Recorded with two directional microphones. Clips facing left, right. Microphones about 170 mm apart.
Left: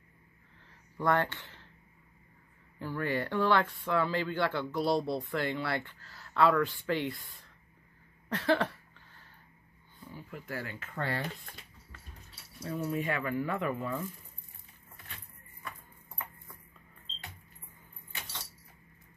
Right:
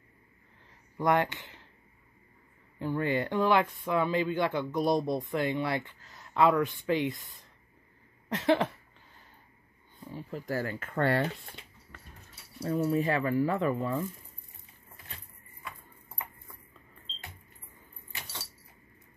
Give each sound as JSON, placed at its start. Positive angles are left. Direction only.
{"t": 0.9, "sound": "speech", "side_deg": -15}
{"t": 2.8, "sound": "speech", "side_deg": -20}
{"t": 8.3, "sound": "a sound", "side_deg": -20}
{"t": 9.9, "sound": "speech", "side_deg": -30}
{"t": 12.5, "sound": "speech", "side_deg": -40}